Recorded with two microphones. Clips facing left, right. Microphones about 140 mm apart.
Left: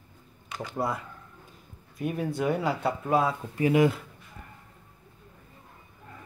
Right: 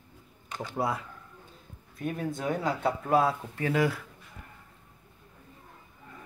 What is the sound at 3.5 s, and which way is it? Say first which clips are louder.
Speech: left 8 dB; 15° left (ahead or behind).